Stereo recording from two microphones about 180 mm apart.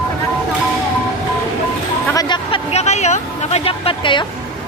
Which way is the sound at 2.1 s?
25° left (ahead or behind).